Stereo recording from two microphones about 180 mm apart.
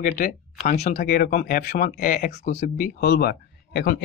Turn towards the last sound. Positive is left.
turn(degrees=60)  # may be behind; listen again after turning